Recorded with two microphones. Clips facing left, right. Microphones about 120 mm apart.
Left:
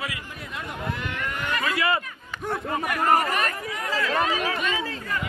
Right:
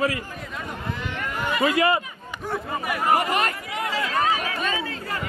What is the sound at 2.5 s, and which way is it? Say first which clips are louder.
Speech: even; centre (ahead or behind).